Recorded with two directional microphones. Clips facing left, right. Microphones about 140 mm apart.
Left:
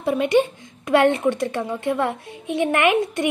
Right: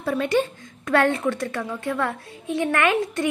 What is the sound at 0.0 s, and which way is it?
A woman's voice, 15° left (ahead or behind).